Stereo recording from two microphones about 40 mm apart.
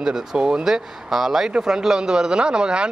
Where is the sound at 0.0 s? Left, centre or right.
Centre.